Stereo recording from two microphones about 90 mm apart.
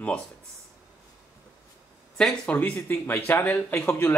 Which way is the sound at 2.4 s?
15° left (ahead or behind).